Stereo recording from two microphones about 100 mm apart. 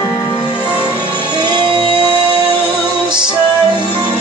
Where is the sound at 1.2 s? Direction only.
50° right (ahead or behind).